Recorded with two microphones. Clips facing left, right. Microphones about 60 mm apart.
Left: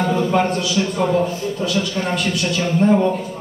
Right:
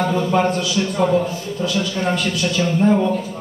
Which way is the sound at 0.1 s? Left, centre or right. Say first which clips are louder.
Even; centre.